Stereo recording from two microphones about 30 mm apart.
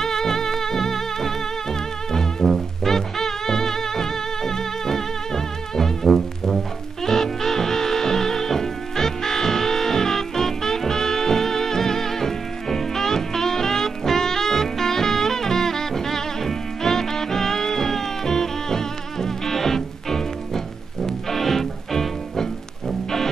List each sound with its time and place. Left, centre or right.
0.0 s music: centre